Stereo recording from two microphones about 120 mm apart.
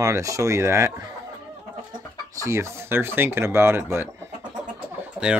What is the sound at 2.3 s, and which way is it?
Speech, 25° right (ahead or behind).